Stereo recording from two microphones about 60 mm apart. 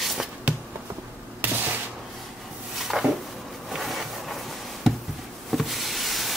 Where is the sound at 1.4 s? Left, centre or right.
Right.